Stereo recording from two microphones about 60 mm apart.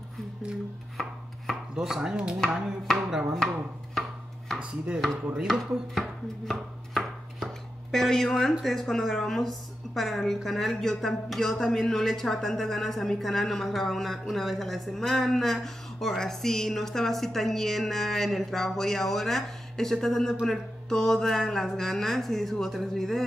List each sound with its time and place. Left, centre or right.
1.5 s chopping: centre
2.9 s speech: centre
4.6 s speech: centre
5.5 s chopping: centre
8.6 s speech: centre